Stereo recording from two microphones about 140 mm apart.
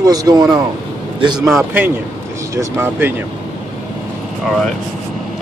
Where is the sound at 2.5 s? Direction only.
20° right (ahead or behind).